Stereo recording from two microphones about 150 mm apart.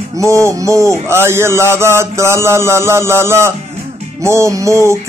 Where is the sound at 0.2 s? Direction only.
20° right (ahead or behind).